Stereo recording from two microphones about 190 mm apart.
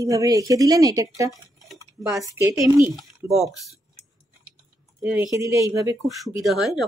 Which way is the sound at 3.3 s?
Centre (ahead or behind).